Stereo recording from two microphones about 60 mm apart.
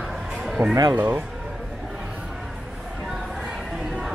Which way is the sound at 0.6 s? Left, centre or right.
Right.